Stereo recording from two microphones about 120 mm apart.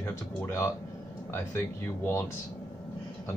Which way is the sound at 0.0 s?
20° left (ahead or behind).